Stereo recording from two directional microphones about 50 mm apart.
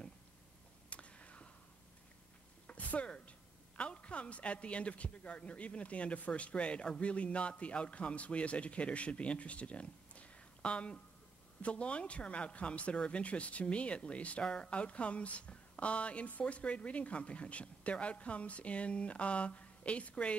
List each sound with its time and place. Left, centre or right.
0.8 s whispering: left
2.6 s a woman's voice: left